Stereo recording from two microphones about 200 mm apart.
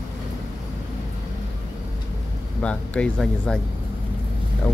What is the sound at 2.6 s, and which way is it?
Speech, 5° left (ahead or behind).